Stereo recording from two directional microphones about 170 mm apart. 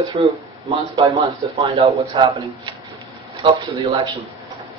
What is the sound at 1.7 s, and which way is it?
Speech, 35° right (ahead or behind).